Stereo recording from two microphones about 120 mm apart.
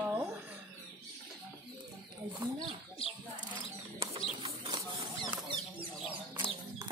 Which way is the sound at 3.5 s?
40° right (ahead or behind).